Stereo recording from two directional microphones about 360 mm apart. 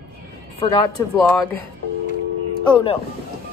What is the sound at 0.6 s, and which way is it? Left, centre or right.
Speech, centre.